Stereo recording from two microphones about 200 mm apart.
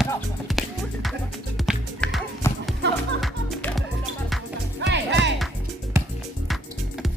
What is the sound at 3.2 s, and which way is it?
Music, 5° left (ahead or behind).